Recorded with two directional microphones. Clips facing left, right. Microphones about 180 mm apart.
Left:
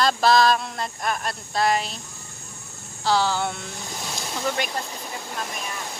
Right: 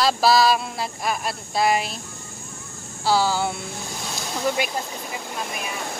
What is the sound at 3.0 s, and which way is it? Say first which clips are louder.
Speech: right 1 dB; 10° right (ahead or behind).